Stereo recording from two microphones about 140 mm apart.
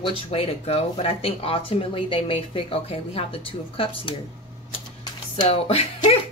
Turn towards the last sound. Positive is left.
turn(degrees=45)  # may be behind; listen again after turning